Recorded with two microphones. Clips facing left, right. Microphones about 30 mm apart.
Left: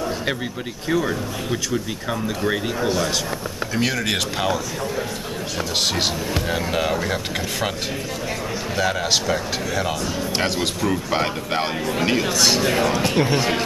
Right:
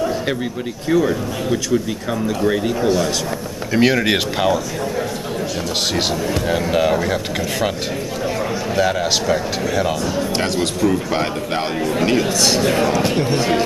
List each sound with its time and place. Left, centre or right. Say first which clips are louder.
0.8 s speech: right 5 dB; centre
3.7 s speech: right 7 dB; centre
4.4 s speech: right 5 dB; centre
6.4 s speech: right 6 dB; centre
8.7 s a man's voice: right 3 dB; centre